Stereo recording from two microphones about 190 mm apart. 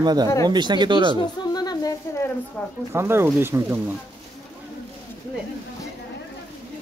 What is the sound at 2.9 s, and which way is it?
Speech, 15° right (ahead or behind).